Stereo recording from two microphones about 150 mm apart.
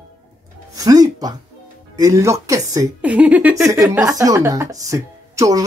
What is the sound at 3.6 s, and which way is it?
Speech, 20° right (ahead or behind).